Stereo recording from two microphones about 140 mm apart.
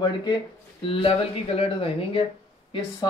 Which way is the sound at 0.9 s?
45° left (ahead or behind).